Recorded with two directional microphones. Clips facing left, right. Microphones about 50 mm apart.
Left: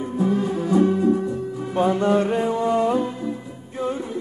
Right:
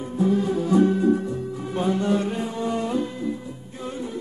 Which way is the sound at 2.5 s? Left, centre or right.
Centre.